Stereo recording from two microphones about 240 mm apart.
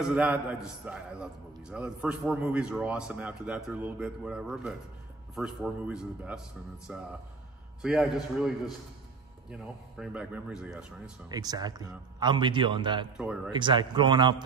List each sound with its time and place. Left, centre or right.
0.0 s a man's voice: centre
11.2 s a man's voice: centre